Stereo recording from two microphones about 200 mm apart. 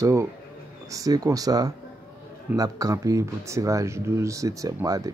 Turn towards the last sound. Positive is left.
turn(degrees=-15)  # may be behind; listen again after turning